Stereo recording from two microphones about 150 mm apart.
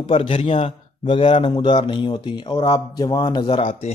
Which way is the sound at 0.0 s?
35° left (ahead or behind).